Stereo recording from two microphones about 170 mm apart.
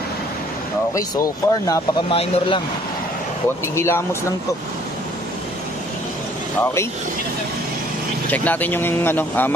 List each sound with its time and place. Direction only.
0.9 s speech: 20° left (ahead or behind)
2.0 s speech: 35° left (ahead or behind)
3.6 s speech: 15° left (ahead or behind)
6.6 s speech: 15° left (ahead or behind)
8.3 s speech: 10° left (ahead or behind)